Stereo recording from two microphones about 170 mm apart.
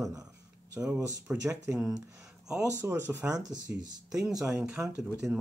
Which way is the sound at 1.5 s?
5° right (ahead or behind).